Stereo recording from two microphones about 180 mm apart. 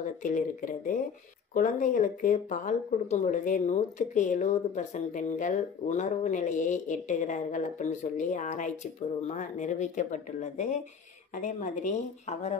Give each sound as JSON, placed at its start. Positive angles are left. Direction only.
{"t": 0.0, "sound": "a woman's voice", "side_deg": 45}